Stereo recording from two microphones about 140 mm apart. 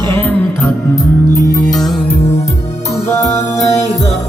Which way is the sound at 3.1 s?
25° left (ahead or behind).